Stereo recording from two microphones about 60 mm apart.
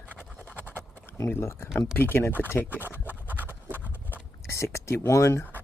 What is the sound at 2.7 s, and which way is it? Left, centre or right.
Scratch, right.